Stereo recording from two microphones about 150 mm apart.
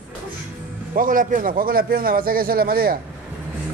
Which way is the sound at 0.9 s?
65° right (ahead or behind).